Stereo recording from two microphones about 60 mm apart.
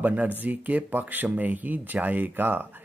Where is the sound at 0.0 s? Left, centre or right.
Right.